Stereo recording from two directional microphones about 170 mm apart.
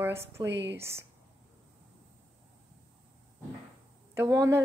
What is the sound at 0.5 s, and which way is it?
Speech, 90° right.